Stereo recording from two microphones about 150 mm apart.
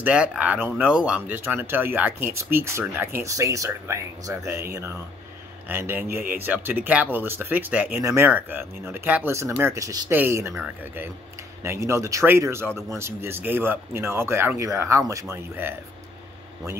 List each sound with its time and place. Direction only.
0.0 s speech: 5° right (ahead or behind)